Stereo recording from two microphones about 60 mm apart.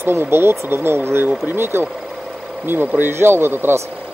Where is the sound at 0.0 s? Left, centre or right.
Right.